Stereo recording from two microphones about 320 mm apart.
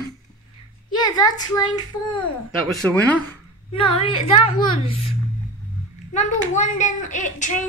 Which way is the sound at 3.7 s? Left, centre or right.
Centre.